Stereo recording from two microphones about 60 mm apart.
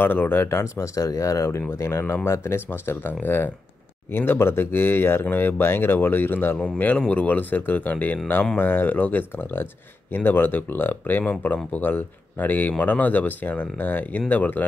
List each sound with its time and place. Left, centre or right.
0.0 s speech: left
0.7 s speech: left
1.7 s speech: left
6.8 s speech: left